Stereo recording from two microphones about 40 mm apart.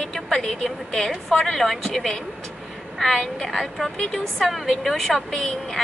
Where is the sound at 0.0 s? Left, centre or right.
Centre.